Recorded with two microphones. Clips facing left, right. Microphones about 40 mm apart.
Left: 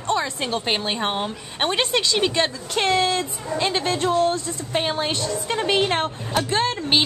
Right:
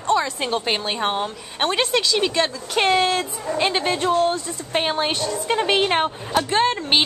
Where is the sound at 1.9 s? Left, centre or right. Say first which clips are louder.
Right 1 dB; left.